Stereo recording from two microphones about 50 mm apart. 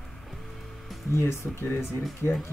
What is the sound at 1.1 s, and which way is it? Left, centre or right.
Speech, left.